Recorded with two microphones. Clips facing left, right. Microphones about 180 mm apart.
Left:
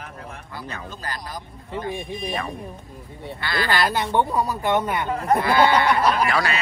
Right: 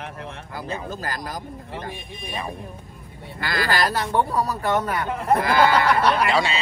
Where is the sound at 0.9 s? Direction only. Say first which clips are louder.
Right 3 dB; 45° right (ahead or behind).